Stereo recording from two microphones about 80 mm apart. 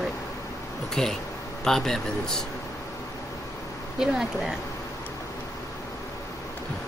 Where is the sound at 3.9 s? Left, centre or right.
Centre.